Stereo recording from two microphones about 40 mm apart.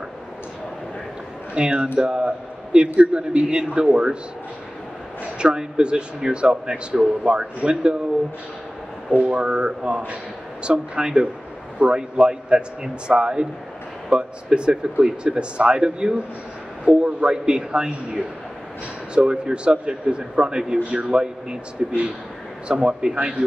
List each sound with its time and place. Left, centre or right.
1.5 s a man's voice: right
5.4 s a man's voice: right
9.1 s a man's voice: right